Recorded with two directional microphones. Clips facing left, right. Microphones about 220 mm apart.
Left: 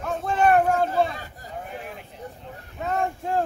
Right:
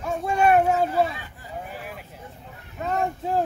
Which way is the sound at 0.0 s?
10° right (ahead or behind).